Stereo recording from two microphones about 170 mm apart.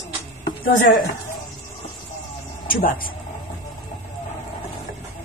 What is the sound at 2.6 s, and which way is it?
Speech, 55° left (ahead or behind).